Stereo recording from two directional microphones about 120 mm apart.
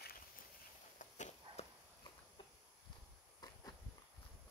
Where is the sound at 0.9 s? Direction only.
85° left.